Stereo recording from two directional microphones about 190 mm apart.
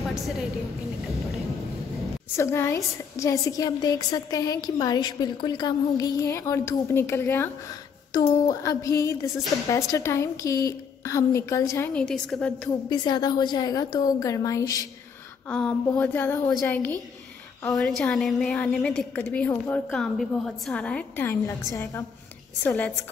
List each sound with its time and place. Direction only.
2.3 s a woman's voice: 15° left (ahead or behind)
12.9 s a woman's voice: 20° left (ahead or behind)
16.0 s a woman's voice: 10° left (ahead or behind)
22.6 s a woman's voice: 10° left (ahead or behind)